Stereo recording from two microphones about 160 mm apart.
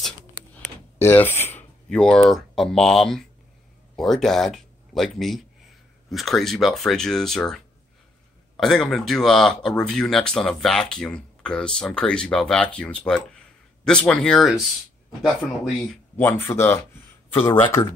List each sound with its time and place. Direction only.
0.9 s speech: 15° left (ahead or behind); by 16.0 s 5° right (ahead or behind)
16.2 s speech: 15° left (ahead or behind)
17.3 s speech: 35° left (ahead or behind)